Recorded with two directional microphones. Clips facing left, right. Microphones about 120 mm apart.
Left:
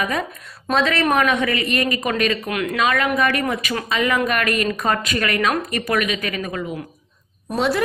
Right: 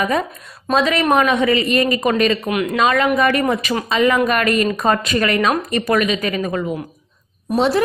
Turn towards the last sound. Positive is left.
turn(degrees=-30)  # may be behind; listen again after turning